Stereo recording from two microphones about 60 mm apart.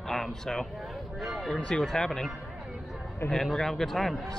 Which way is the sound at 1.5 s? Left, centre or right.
Centre.